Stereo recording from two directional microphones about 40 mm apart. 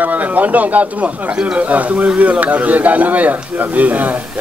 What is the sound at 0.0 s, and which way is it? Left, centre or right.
A man's voice, right.